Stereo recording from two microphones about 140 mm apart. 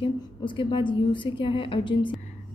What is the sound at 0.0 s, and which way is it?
A woman's voice, 35° left (ahead or behind).